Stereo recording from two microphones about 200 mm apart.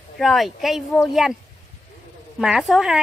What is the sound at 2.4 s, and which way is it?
Speech, centre (ahead or behind).